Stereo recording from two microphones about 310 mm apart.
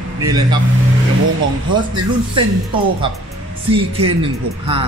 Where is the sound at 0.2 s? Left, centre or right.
Centre.